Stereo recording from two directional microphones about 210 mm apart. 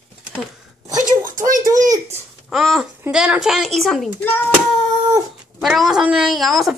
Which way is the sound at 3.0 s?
5° right (ahead or behind).